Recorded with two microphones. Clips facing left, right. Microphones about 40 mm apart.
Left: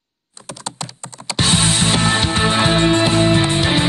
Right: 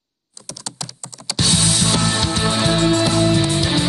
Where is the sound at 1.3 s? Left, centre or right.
Left.